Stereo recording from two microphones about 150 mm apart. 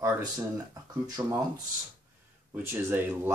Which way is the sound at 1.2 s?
20° right (ahead or behind).